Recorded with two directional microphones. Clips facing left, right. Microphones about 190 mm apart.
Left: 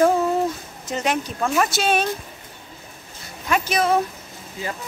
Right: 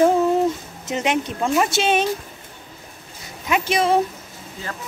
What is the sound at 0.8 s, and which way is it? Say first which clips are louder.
Speech: right 2 dB; 20° right (ahead or behind).